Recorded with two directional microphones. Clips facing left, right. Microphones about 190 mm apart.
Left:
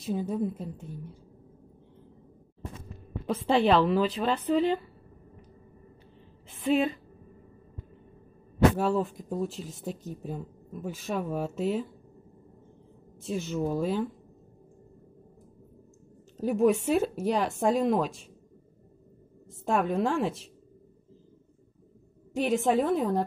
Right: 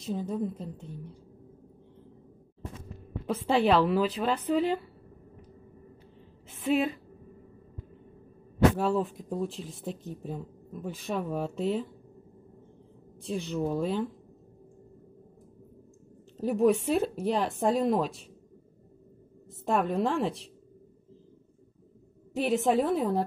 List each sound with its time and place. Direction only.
0.0 s a woman's voice: 5° left (ahead or behind)
3.4 s a woman's voice: 5° right (ahead or behind)
8.7 s speech: centre (ahead or behind)
13.2 s speech: 5° left (ahead or behind)
16.3 s speech: centre (ahead or behind)
19.6 s speech: centre (ahead or behind)
22.3 s speech: centre (ahead or behind)